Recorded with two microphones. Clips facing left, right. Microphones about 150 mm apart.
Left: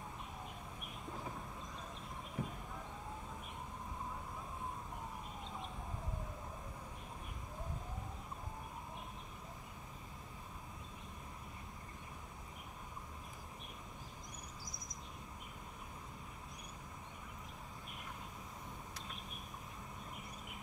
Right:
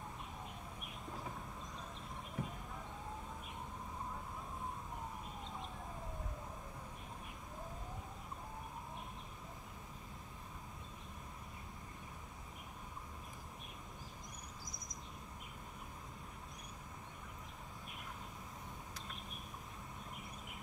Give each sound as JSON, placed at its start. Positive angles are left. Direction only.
{"t": 2.4, "sound": "basketball bounce", "side_deg": 0}